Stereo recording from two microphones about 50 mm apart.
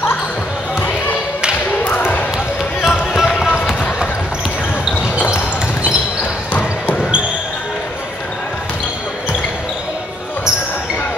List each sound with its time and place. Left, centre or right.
1.9 s basketball bounce: left
2.8 s basketball bounce: centre